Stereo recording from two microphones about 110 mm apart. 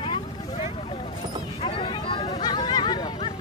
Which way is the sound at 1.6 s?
55° left (ahead or behind).